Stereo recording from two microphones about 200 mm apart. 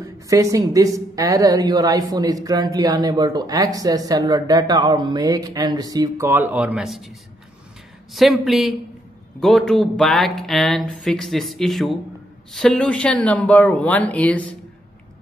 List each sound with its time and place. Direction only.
0.0 s a woman's voice: 15° right (ahead or behind)
8.1 s speech: centre (ahead or behind)